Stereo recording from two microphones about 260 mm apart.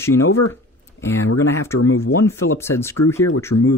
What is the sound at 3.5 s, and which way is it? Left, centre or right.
Speech, left.